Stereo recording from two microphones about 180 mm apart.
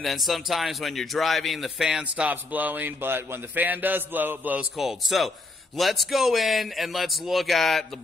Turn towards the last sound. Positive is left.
turn(degrees=0)  # may be behind; listen again after turning